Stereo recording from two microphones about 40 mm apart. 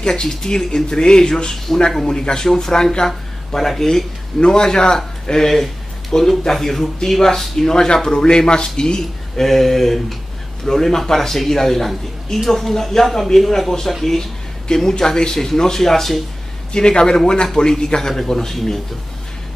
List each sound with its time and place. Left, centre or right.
0.0 s speech: centre
9.5 s speech: centre
16.7 s a man's voice: centre